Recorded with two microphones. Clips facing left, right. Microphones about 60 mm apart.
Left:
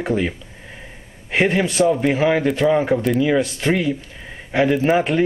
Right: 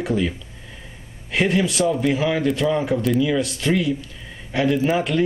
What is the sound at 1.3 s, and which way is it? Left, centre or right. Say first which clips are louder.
A man's voice: left 2 dB; left.